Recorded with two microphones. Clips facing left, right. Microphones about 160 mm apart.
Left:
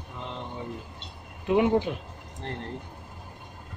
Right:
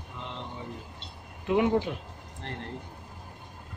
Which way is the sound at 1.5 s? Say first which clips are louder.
Left 2 dB; 20° left (ahead or behind).